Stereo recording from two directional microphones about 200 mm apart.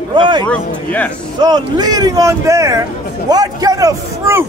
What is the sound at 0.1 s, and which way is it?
Speech, 25° right (ahead or behind).